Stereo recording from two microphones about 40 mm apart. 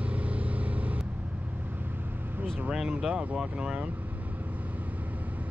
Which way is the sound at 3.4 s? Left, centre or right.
Right.